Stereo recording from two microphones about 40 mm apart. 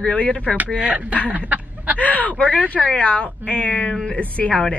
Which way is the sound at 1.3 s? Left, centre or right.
Right.